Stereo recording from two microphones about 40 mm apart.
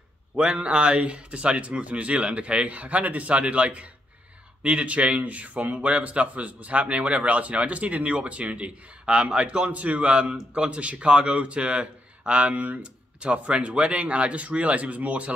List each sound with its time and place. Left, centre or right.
0.4 s a man's voice: right
12.5 s speech: right
13.2 s a man's voice: right